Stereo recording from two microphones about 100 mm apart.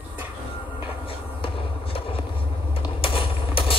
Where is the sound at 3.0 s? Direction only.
60° left (ahead or behind).